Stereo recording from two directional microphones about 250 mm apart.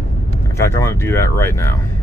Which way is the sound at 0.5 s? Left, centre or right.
Centre.